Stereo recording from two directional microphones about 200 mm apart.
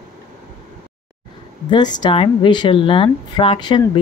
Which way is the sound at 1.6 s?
20° left (ahead or behind).